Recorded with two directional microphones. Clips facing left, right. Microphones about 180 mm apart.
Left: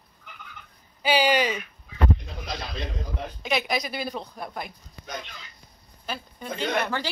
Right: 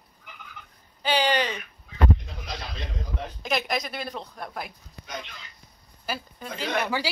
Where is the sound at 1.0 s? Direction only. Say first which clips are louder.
Left 2 dB; 10° left (ahead or behind).